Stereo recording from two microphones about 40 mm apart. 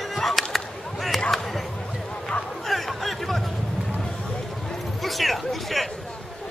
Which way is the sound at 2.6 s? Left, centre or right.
Centre.